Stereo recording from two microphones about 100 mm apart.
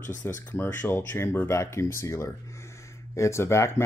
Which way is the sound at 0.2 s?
25° left (ahead or behind).